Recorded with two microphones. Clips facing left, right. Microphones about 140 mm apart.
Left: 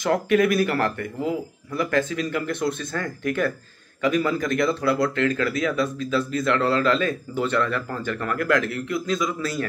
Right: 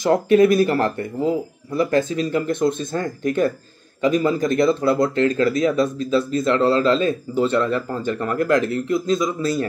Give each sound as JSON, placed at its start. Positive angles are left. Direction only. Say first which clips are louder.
{"t": 0.0, "sound": "speech", "louder": "right 5 dB", "side_deg": -30}